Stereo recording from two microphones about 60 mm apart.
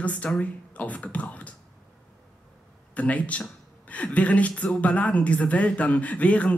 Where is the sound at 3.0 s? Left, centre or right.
Left.